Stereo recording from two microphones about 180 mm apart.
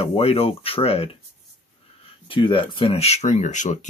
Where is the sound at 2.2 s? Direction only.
30° left (ahead or behind).